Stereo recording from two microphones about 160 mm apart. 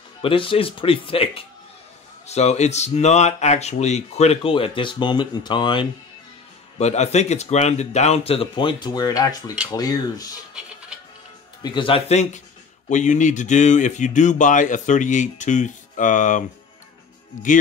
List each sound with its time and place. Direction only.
0.2 s speech: 35° left (ahead or behind)
6.8 s speech: 45° left (ahead or behind); by 10.4 s 25° left (ahead or behind)
11.6 s speech: 30° left (ahead or behind); by 16.4 s 55° left (ahead or behind)